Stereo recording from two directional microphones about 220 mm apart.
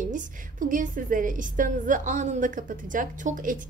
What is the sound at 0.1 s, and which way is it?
A woman's voice, 35° right (ahead or behind).